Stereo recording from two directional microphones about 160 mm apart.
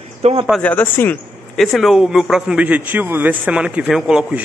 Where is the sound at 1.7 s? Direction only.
Centre (ahead or behind).